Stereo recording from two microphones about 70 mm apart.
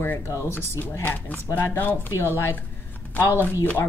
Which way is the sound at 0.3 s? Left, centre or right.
Left.